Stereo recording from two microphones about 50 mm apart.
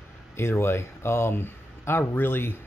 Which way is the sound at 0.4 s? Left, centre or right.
Left.